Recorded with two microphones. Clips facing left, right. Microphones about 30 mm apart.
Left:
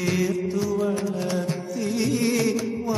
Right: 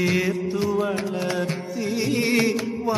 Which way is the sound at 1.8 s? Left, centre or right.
Centre.